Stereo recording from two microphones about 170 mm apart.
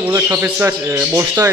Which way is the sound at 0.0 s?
15° right (ahead or behind).